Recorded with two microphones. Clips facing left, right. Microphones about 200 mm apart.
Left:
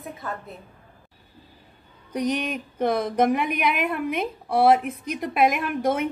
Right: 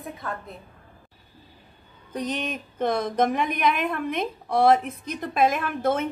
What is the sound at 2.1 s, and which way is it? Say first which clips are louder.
A woman's voice: left 4 dB; 10° left (ahead or behind).